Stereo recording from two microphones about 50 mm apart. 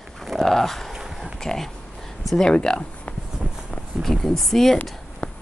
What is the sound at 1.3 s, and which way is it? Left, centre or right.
Speech, centre.